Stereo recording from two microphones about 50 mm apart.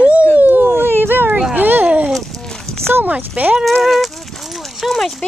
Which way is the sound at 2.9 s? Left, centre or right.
Right.